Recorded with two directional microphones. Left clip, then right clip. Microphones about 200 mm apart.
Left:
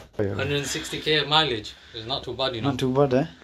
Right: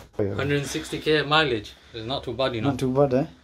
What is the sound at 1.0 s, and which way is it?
Speech, 40° right (ahead or behind).